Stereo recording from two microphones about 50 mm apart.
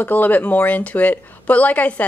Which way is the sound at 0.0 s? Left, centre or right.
Left.